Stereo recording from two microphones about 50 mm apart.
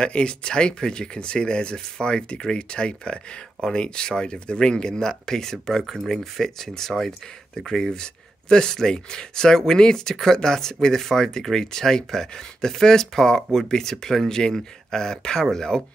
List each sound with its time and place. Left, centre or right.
0.0 s speech: centre